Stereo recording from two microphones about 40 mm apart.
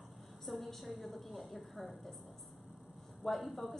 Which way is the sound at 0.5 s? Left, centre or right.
Centre.